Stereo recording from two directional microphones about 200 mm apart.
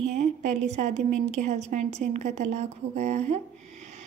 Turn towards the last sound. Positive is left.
turn(degrees=-35)  # may be behind; listen again after turning